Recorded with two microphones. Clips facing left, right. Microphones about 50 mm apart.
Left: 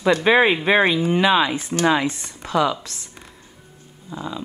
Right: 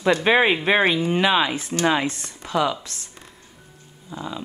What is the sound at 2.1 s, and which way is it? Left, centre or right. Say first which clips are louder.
Speech: left 1 dB; left.